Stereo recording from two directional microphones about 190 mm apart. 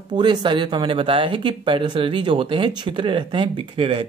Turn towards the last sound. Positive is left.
turn(degrees=-25)  # may be behind; listen again after turning